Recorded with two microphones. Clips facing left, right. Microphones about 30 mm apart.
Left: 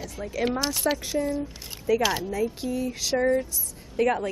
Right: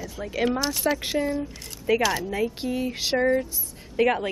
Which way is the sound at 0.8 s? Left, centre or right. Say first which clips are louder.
Right 1 dB; centre.